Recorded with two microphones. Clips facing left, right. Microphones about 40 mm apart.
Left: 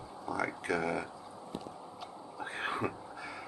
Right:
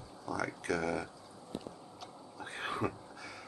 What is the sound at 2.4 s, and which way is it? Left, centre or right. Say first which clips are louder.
Cat: left 1 dB; centre.